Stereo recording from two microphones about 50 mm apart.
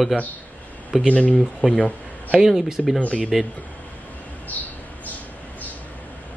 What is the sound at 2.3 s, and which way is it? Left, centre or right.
Speech, centre.